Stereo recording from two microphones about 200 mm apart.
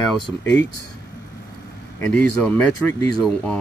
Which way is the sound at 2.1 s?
5° left (ahead or behind).